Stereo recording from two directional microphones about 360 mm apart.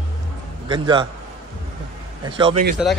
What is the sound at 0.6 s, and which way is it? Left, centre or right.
Speech, centre.